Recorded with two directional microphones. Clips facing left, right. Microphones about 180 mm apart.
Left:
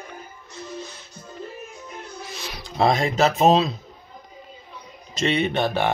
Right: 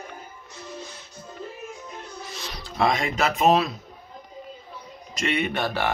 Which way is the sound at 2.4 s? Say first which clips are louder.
Left 1 dB; 5° left (ahead or behind).